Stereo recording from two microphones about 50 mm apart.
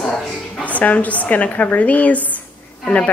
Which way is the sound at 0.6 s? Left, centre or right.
Left.